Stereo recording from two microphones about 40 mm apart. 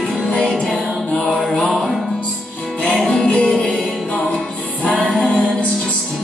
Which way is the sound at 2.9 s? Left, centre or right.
Centre.